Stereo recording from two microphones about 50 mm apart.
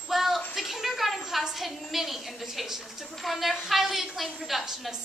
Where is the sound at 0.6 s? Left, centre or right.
Centre.